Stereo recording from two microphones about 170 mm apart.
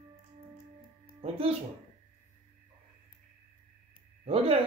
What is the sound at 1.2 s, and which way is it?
Speech, 35° right (ahead or behind).